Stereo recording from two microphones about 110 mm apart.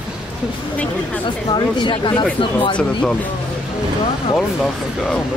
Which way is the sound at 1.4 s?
45° left (ahead or behind).